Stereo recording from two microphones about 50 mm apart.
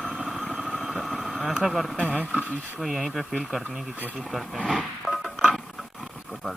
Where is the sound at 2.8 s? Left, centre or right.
Centre.